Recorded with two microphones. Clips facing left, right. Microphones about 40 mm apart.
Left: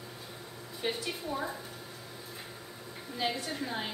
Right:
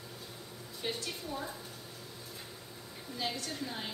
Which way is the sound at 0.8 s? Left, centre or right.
Centre.